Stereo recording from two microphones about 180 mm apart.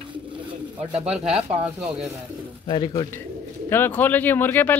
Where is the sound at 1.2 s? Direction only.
35° right (ahead or behind).